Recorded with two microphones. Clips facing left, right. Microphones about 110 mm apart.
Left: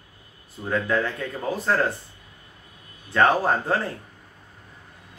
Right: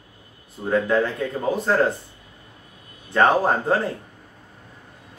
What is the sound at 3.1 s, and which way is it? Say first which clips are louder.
Speech: right 2 dB; 25° right (ahead or behind).